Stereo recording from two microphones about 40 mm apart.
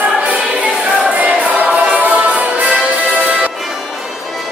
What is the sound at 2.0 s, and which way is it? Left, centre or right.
Music, right.